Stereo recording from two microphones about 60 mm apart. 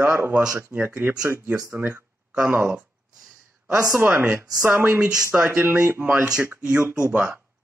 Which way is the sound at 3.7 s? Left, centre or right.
Centre.